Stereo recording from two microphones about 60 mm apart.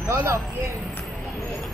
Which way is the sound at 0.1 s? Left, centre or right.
Right.